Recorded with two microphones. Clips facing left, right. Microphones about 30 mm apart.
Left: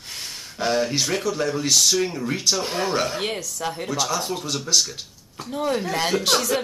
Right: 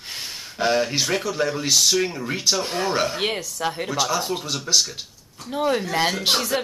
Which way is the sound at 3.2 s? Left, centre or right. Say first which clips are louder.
Right 2 dB; right.